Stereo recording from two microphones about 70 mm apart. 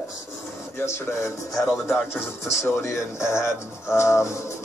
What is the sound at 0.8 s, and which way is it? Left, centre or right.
Speech, left.